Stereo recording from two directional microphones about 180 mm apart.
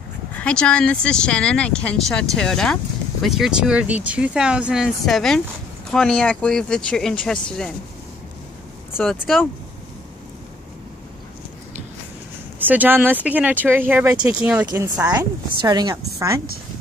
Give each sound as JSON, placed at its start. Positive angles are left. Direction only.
{"t": 0.4, "sound": "speech", "side_deg": 5}
{"t": 9.0, "sound": "speech", "side_deg": 0}
{"t": 12.5, "sound": "a woman's voice", "side_deg": -10}